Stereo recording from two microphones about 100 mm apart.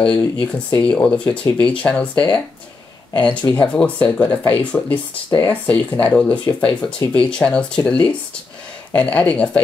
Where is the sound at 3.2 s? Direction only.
50° left (ahead or behind).